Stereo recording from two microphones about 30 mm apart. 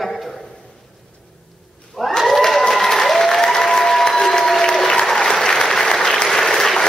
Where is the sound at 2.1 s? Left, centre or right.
Centre.